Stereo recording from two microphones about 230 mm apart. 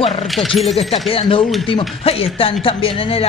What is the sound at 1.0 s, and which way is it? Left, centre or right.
A man's voice, left.